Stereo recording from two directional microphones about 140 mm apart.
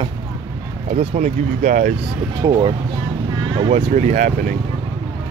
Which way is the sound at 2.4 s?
35° right (ahead or behind).